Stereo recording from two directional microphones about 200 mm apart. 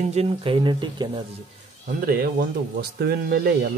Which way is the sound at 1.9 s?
45° right (ahead or behind).